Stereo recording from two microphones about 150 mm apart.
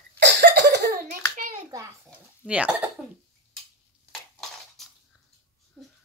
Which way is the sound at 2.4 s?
5° right (ahead or behind).